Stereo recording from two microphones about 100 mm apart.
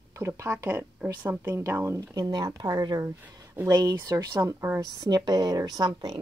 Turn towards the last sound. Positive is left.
turn(degrees=-45)  # may be behind; listen again after turning